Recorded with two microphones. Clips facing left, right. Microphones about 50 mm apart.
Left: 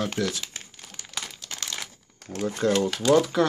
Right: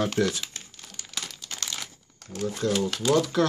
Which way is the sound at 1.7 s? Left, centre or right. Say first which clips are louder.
Left 1 dB; centre.